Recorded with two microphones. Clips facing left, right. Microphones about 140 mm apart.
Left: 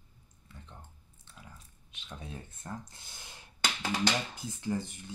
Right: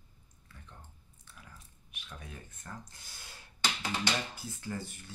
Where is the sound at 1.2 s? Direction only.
25° left (ahead or behind).